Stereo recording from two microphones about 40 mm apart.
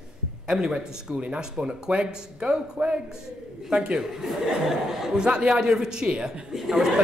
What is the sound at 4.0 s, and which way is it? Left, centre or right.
Speech, centre.